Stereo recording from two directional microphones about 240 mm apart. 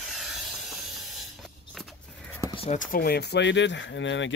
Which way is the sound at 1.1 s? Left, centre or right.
Centre.